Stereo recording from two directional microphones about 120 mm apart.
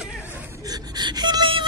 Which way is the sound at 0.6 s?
35° right (ahead or behind).